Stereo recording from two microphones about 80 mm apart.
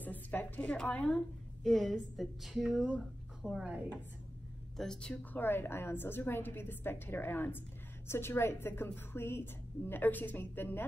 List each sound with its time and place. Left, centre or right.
0.0 s a woman's voice: left; by 3.6 s centre
4.7 s a woman's voice: centre
5.3 s a woman's voice: left